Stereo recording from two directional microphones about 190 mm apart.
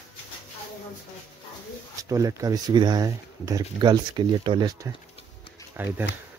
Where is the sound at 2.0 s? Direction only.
15° right (ahead or behind).